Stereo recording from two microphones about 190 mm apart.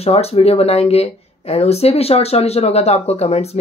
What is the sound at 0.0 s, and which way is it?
Speech, 35° left (ahead or behind).